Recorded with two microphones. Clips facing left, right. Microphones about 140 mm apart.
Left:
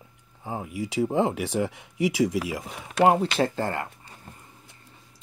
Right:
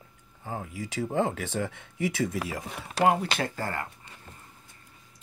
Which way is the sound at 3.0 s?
25° left (ahead or behind).